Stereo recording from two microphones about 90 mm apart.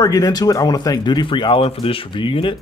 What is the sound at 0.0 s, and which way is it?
Speech, 45° left (ahead or behind).